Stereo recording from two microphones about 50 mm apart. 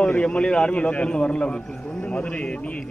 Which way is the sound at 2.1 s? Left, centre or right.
Centre.